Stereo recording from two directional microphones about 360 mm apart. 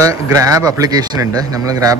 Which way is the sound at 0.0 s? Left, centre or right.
Centre.